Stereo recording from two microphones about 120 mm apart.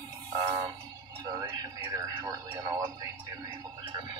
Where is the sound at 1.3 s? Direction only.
30° right (ahead or behind).